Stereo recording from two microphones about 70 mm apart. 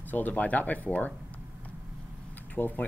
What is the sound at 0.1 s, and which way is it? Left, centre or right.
Speech, left.